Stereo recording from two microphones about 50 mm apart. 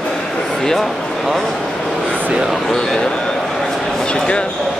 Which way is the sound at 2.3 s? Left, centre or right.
Centre.